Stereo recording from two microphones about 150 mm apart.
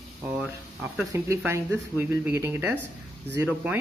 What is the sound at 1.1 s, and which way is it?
Speech, 20° right (ahead or behind).